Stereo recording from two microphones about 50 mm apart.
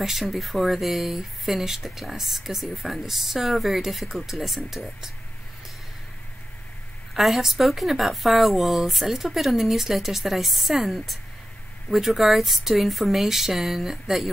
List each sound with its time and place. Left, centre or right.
0.0 s speech: centre
7.2 s speech: centre